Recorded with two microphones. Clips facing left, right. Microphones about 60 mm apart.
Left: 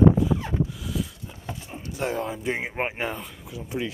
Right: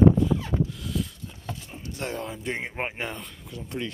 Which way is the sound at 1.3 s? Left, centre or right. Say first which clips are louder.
Left 2 dB; centre.